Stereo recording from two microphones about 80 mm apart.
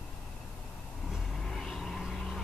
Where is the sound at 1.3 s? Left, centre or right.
Centre.